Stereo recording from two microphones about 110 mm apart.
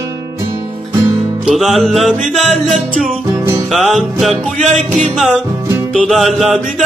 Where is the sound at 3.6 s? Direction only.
Centre (ahead or behind).